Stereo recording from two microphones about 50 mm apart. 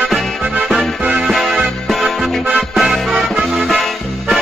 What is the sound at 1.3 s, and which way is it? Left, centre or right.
Music, centre.